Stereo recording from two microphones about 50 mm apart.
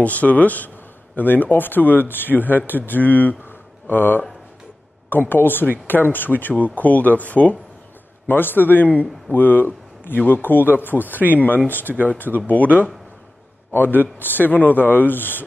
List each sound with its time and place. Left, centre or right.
0.0 s speech: left
8.3 s a man's voice: left
11.0 s a man's voice: right
11.2 s a man's voice: left